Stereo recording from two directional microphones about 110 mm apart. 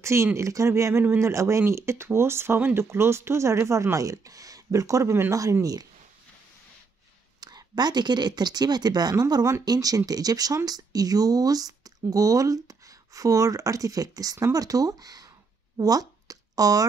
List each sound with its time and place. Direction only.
0.0 s speech: 25° right (ahead or behind)
7.3 s speech: 40° right (ahead or behind)
15.8 s a sound: 35° right (ahead or behind)